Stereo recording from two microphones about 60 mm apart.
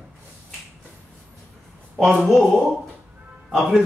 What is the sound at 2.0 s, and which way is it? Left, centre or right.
A woman's voice, centre.